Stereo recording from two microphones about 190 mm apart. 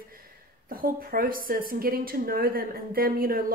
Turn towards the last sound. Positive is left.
turn(degrees=-50)  # may be behind; listen again after turning